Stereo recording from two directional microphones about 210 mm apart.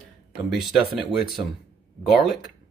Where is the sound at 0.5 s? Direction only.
Centre (ahead or behind).